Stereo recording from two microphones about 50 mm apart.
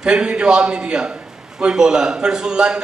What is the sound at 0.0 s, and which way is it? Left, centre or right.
A man's voice, centre.